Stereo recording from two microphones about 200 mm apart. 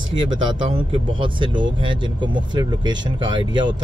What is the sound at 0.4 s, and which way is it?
Speech, 25° right (ahead or behind).